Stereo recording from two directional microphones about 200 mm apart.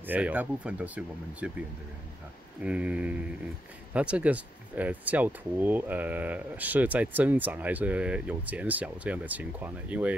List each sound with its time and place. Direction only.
0.0 s speech: 10° right (ahead or behind)
2.6 s speech: 5° right (ahead or behind)